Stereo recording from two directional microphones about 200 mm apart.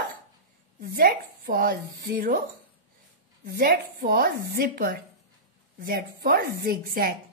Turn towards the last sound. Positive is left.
turn(degrees=-50)  # may be behind; listen again after turning